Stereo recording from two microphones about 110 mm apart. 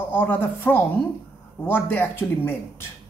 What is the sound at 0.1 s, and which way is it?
Speech, 15° left (ahead or behind).